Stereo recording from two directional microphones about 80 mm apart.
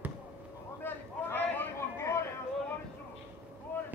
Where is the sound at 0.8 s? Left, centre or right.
Left.